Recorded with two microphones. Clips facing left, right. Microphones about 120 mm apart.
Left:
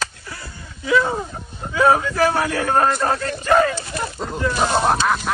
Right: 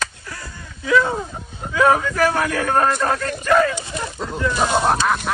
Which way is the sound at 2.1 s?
30° left (ahead or behind).